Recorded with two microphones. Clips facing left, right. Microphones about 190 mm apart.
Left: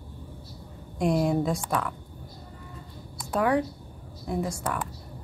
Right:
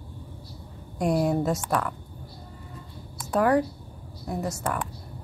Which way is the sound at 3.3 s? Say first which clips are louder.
Right 3 dB; 5° right (ahead or behind).